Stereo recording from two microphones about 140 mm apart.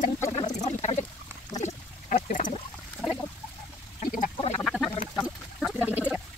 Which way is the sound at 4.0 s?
75° left (ahead or behind).